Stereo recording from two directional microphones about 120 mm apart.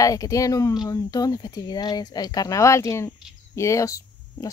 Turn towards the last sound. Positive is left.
turn(degrees=25)  # may be behind; listen again after turning